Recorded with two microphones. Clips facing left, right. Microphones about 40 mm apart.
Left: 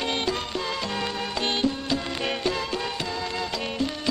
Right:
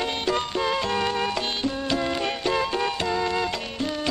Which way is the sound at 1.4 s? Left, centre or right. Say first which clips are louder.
Left 3 dB; centre.